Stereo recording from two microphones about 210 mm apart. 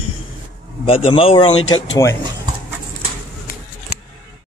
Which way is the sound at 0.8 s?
25° left (ahead or behind).